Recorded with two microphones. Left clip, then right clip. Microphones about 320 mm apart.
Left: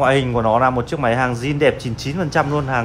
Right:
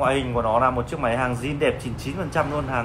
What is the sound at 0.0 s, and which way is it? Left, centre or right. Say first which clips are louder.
Speech: left 6 dB; left.